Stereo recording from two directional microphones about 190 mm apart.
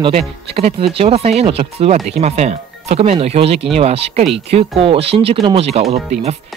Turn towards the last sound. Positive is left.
turn(degrees=-35)  # may be behind; listen again after turning